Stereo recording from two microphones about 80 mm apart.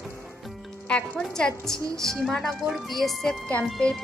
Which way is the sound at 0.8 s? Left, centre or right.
Centre.